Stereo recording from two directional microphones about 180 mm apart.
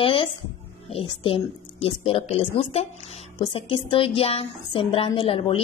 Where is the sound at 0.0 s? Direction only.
30° left (ahead or behind).